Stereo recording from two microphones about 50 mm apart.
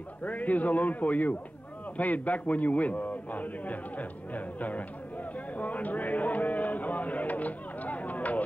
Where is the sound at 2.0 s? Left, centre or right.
Left.